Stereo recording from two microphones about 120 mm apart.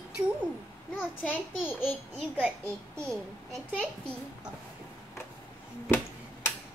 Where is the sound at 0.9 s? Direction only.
15° left (ahead or behind).